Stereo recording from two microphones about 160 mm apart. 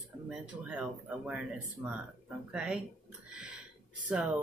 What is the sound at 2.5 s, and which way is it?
Speech, 5° right (ahead or behind).